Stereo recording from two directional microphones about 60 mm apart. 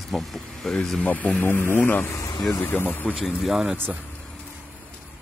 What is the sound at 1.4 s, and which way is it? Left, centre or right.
Speech, left.